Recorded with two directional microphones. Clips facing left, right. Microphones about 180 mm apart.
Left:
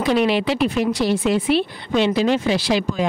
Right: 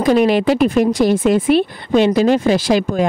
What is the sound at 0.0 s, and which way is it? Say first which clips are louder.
Speech: right 5 dB; 45° right (ahead or behind).